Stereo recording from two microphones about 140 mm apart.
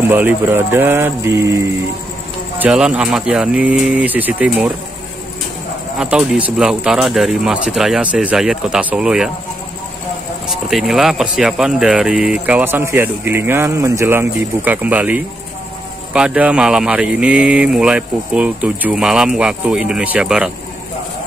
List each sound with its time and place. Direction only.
0.1 s speech: 10° right (ahead or behind)
2.6 s speech: 5° right (ahead or behind)
5.9 s speech: 5° right (ahead or behind)
10.5 s speech: centre (ahead or behind)